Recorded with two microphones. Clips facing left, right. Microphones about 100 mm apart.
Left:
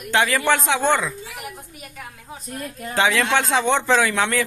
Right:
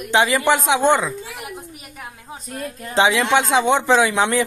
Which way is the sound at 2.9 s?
20° right (ahead or behind).